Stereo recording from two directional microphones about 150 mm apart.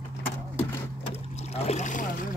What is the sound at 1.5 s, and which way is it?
Speech, 45° left (ahead or behind).